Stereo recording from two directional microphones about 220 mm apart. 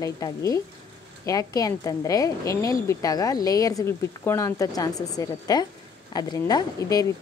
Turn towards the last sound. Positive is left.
turn(degrees=15)  # may be behind; listen again after turning